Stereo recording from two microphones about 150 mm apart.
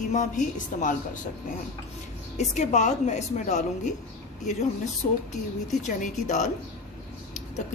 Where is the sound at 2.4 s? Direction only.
50° left (ahead or behind).